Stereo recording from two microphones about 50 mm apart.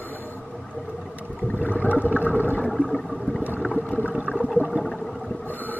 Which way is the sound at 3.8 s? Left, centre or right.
Left.